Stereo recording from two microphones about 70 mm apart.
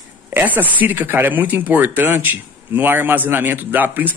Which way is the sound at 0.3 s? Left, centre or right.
Right.